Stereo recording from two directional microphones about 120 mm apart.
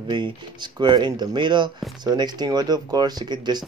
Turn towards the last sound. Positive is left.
turn(degrees=-35)  # may be behind; listen again after turning